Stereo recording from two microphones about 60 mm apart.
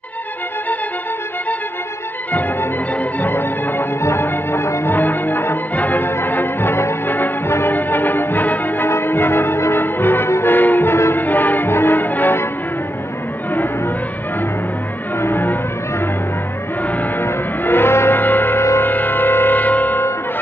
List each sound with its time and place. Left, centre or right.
3.2 s music: left
11.2 s change ringing: left
15.2 s a sound: left
17.2 s music: left
18.6 s music: left
18.9 s music: left